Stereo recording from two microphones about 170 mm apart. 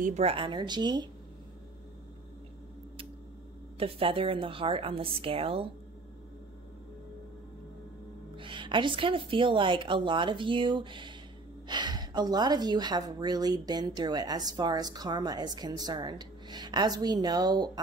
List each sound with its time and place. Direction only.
0.0 s a woman's voice: 40° right (ahead or behind)
3.8 s a woman's voice: 30° right (ahead or behind)
8.4 s a woman's voice: 30° right (ahead or behind)